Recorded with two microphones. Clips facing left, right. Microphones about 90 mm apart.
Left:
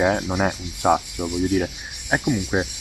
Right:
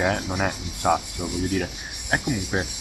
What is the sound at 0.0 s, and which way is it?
Speech, 10° left (ahead or behind).